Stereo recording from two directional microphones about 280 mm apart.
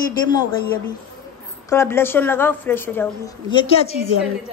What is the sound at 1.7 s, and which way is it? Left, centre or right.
A woman's voice, centre.